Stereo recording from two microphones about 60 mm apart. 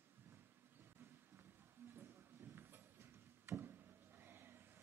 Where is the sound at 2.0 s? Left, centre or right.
Right.